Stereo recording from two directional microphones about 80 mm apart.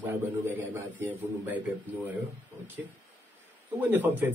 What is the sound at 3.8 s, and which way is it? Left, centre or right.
Speech, right.